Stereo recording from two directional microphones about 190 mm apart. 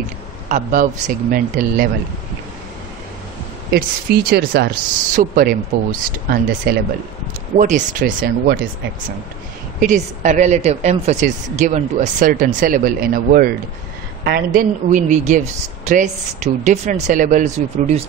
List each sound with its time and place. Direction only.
0.5 s speech: 40° right (ahead or behind)
3.7 s speech: 55° right (ahead or behind)
7.5 s speech: 40° right (ahead or behind)
9.8 s speech: 40° right (ahead or behind)